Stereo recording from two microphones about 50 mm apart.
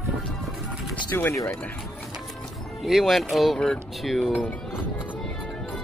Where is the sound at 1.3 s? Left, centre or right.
Left.